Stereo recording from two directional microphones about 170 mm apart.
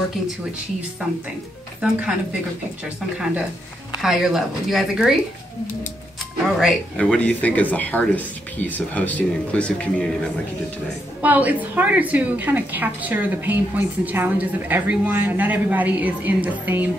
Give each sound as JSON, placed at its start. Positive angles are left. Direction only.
{"t": 1.8, "sound": "speech", "side_deg": -5}
{"t": 4.0, "sound": "speech", "side_deg": 0}
{"t": 6.6, "sound": "speech", "side_deg": 5}
{"t": 11.2, "sound": "a woman's voice", "side_deg": -10}